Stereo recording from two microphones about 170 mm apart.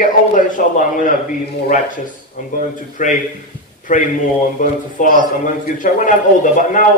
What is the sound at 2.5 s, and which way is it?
A man's voice, 50° left (ahead or behind).